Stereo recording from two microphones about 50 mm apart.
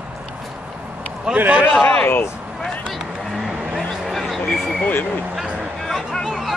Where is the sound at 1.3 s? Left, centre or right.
Right.